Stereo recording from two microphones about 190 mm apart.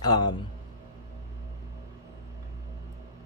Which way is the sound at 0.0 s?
20° left (ahead or behind).